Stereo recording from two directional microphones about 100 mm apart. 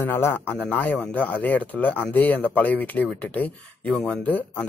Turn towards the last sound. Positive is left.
turn(degrees=15)  # may be behind; listen again after turning